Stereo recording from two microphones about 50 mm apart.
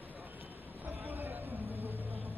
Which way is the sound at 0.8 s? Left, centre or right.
Right.